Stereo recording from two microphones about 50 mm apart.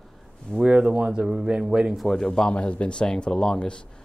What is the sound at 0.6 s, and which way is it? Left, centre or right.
Speech, centre.